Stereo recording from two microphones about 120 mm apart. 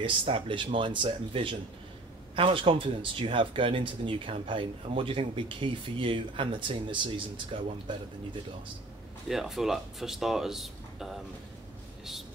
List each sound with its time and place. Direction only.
0.0 s speech: 45° right (ahead or behind)
9.3 s speech: centre (ahead or behind)